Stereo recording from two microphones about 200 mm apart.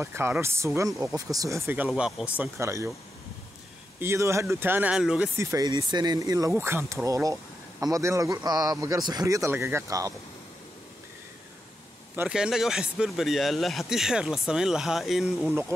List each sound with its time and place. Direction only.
0.0 s speech: 10° right (ahead or behind)
1.9 s speech: centre (ahead or behind)
4.0 s speech: 15° right (ahead or behind)
5.4 s speech: 15° right (ahead or behind)
12.2 s speech: 5° right (ahead or behind)